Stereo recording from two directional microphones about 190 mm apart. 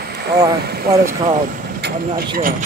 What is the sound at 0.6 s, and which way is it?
Speech, 55° right (ahead or behind).